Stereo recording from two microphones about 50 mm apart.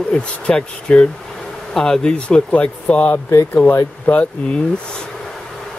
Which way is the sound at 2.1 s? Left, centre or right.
Left.